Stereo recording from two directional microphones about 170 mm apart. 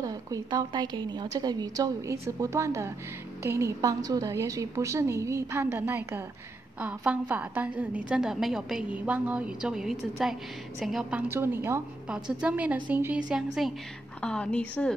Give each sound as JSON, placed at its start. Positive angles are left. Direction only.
{"t": 0.0, "sound": "a woman's voice", "side_deg": -20}